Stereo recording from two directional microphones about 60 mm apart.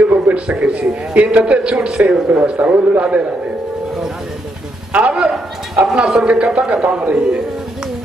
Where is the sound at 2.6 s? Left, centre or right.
Right.